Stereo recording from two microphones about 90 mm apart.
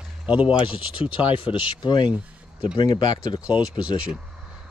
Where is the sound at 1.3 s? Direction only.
65° left (ahead or behind); by 3.4 s 45° left (ahead or behind).